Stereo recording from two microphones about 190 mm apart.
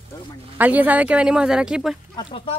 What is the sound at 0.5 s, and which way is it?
Speech, 10° right (ahead or behind).